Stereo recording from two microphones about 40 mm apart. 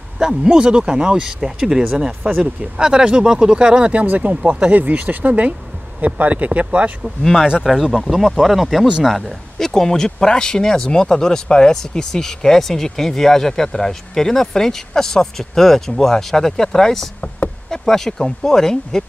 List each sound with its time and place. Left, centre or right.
0.2 s speech: centre
3.9 s speech: right
7.6 s speech: centre